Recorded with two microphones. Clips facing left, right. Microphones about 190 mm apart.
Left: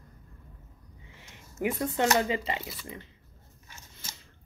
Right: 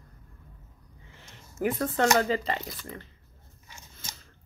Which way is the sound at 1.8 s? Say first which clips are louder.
Right 2 dB; 15° left (ahead or behind).